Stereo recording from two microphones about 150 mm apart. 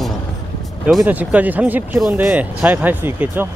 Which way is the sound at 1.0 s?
10° right (ahead or behind).